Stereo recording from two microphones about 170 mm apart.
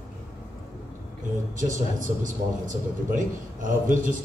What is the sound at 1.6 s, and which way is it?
A man's voice, 50° right (ahead or behind).